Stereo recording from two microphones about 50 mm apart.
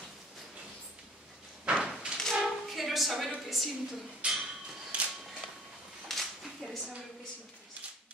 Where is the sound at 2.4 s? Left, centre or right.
Centre.